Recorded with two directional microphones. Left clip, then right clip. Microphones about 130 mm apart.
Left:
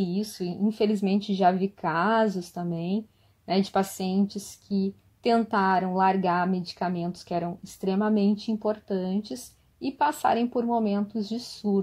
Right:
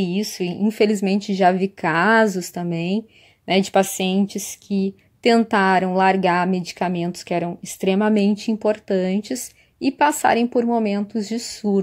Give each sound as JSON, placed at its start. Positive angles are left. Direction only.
{"t": 0.0, "sound": "a woman's voice", "side_deg": -50}
{"t": 0.6, "sound": "a woman's voice", "side_deg": -45}